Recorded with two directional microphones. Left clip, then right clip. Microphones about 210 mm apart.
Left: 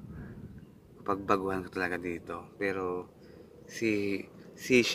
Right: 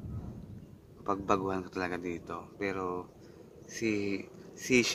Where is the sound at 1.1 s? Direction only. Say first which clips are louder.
Left 1 dB; centre (ahead or behind).